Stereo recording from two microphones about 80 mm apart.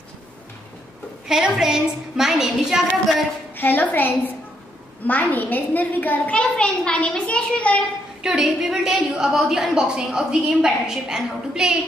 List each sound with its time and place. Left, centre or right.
1.2 s a woman's voice: centre
3.5 s a woman's voice: left
8.2 s a woman's voice: centre